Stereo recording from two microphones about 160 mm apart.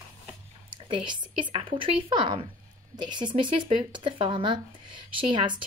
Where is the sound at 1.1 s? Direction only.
30° right (ahead or behind).